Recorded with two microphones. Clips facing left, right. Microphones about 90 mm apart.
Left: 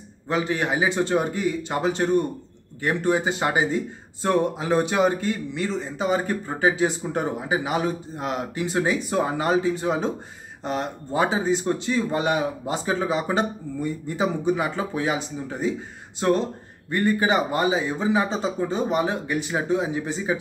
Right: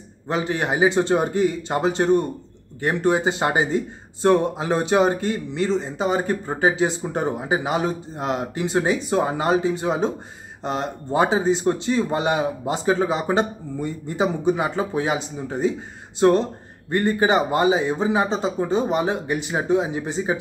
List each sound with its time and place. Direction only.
0.3 s speech: 25° right (ahead or behind)
16.9 s speech: 30° right (ahead or behind)